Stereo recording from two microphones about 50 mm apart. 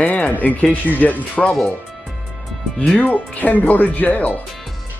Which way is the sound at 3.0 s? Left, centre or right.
Left.